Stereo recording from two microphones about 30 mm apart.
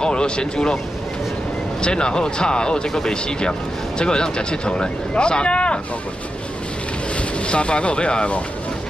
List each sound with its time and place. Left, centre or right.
0.0 s speech: left
1.8 s speech: left
7.2 s speech: left